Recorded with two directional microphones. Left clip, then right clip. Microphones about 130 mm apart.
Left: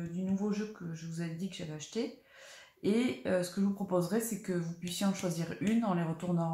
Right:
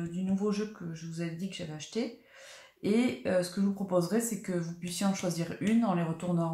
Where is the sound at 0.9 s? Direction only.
15° right (ahead or behind).